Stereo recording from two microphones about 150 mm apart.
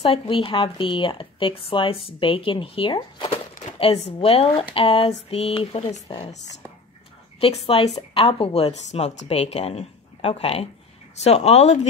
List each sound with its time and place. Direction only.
0.0 s a woman's voice: 40° left (ahead or behind)
7.3 s a woman's voice: 40° left (ahead or behind)